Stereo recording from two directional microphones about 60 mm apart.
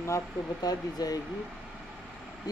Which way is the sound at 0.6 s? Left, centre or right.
Left.